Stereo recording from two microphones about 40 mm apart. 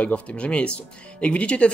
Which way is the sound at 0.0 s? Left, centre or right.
Left.